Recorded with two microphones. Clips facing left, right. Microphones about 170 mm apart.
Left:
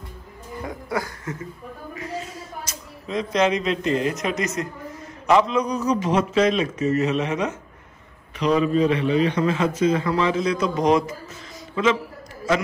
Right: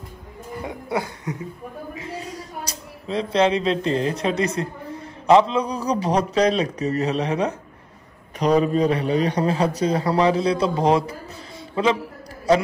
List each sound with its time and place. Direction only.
0.7 s speech: 25° right (ahead or behind)
2.2 s a man's voice: 35° right (ahead or behind)